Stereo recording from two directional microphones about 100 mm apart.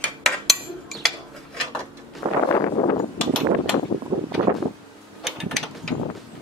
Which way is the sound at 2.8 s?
35° left (ahead or behind).